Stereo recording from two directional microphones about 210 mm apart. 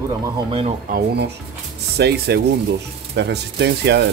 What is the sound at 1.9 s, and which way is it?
Speech, 50° right (ahead or behind).